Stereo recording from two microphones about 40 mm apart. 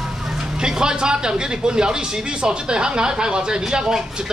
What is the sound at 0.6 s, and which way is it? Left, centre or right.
Speech, centre.